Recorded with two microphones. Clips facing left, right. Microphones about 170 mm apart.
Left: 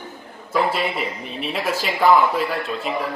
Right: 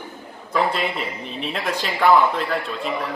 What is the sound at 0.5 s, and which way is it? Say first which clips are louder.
Speech: left 1 dB; 5° left (ahead or behind).